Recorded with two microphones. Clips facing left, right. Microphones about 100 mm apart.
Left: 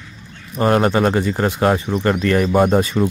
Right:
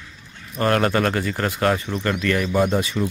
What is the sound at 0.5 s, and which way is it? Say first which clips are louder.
Speech: left 4 dB; 20° left (ahead or behind).